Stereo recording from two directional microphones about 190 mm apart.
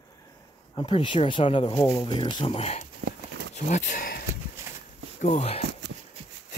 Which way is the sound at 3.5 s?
40° left (ahead or behind).